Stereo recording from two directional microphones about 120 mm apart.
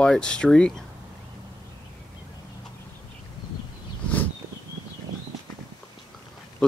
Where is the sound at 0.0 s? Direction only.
5° left (ahead or behind).